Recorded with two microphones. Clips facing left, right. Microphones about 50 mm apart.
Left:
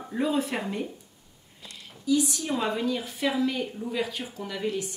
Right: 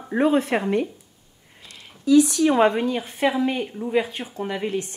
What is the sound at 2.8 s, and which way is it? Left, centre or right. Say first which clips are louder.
A woman's voice: right 5 dB; right.